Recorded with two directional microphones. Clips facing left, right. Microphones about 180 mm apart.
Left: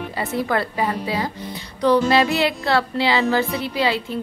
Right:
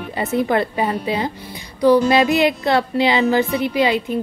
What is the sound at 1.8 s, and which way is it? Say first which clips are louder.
Music: right 3 dB; 10° right (ahead or behind).